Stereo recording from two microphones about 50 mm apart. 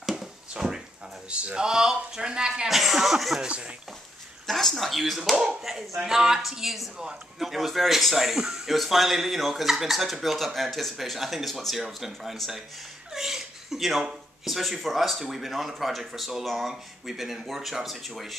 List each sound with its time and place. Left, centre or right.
0.0 s a sound: centre
1.3 s speech: centre
2.7 s a man's voice: centre
3.3 s speech: right
4.5 s a man's voice: centre
13.1 s laughter: centre
14.4 s a man's voice: centre